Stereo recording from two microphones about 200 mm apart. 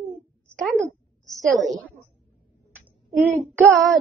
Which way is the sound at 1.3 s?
Centre (ahead or behind).